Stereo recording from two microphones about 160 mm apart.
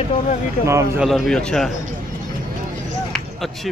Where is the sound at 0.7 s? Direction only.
15° right (ahead or behind).